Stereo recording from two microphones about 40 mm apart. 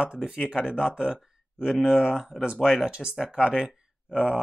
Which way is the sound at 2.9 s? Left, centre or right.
Right.